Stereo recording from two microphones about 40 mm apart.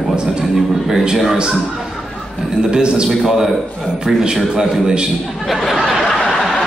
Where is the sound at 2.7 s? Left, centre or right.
Centre.